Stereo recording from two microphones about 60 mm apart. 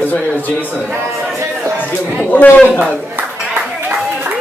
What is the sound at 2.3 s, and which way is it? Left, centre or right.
Speech, left.